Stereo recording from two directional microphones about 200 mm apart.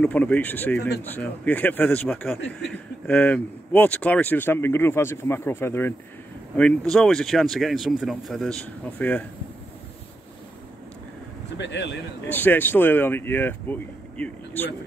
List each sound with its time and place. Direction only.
0.0 s speech: 5° left (ahead or behind)
0.7 s speech: 55° left (ahead or behind)
1.0 s speech: 10° left (ahead or behind)
11.5 s speech: 60° left (ahead or behind)
12.3 s speech: 10° left (ahead or behind)